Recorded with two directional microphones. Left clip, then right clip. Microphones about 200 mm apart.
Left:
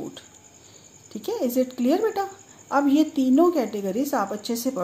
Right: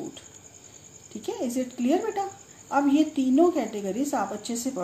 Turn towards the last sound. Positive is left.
turn(degrees=35)  # may be behind; listen again after turning